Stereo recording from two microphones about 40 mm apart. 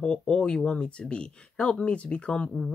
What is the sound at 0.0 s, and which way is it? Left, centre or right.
Speech, left.